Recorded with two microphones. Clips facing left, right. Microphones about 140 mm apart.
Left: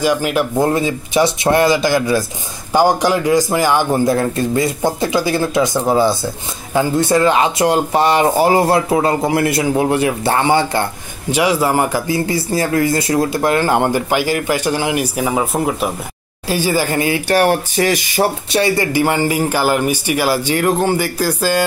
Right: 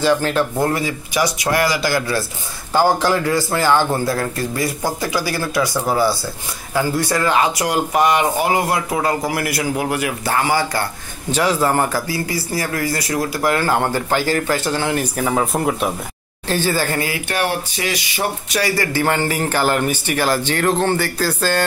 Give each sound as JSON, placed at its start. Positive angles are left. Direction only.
{"t": 0.0, "sound": "speech", "side_deg": 10}
{"t": 11.3, "sound": "speech", "side_deg": 10}
{"t": 12.3, "sound": "speech", "side_deg": 25}
{"t": 17.3, "sound": "speech", "side_deg": 45}
{"t": 18.5, "sound": "speech", "side_deg": 25}